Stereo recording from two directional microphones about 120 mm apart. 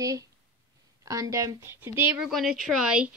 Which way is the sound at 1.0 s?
25° right (ahead or behind).